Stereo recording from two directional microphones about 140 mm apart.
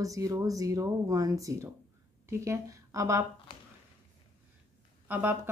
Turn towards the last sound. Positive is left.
turn(degrees=-15)  # may be behind; listen again after turning